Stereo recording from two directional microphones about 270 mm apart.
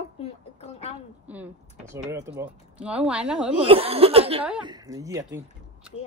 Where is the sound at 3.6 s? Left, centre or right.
Right.